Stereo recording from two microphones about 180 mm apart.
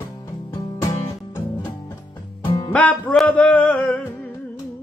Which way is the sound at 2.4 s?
20° left (ahead or behind).